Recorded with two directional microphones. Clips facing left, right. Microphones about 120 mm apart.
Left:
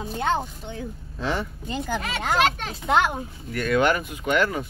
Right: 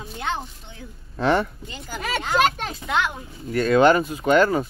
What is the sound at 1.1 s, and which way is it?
Speech, 65° right (ahead or behind).